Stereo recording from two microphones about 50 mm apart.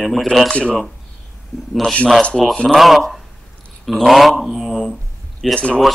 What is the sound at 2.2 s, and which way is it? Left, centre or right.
Speech, left.